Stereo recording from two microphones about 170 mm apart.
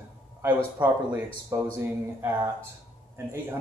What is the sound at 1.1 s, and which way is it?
Speech, 10° right (ahead or behind).